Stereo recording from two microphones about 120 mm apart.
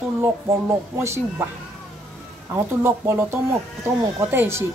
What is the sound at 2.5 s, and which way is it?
Speech, 20° right (ahead or behind).